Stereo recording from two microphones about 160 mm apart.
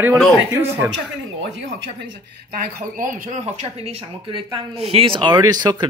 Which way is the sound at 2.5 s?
60° right (ahead or behind).